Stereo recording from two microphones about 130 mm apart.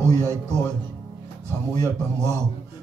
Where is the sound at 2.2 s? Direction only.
20° right (ahead or behind).